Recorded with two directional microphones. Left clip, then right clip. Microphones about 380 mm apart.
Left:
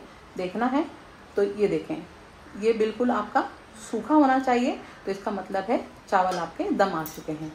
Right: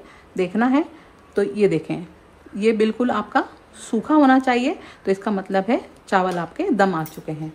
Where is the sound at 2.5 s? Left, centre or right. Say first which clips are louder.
Right 4 dB; right.